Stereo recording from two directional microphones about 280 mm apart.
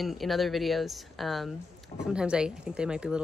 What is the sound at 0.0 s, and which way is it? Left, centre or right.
Speech, centre.